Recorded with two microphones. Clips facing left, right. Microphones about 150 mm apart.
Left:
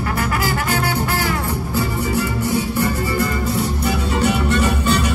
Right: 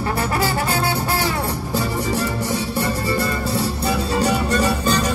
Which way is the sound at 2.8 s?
30° right (ahead or behind).